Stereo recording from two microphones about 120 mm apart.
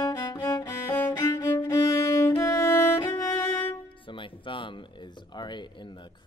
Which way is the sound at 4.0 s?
45° left (ahead or behind).